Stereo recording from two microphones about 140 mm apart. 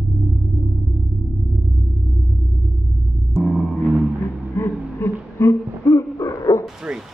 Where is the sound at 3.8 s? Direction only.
10° right (ahead or behind).